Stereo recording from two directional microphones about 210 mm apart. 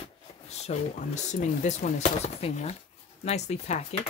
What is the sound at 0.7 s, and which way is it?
Speech, 35° left (ahead or behind).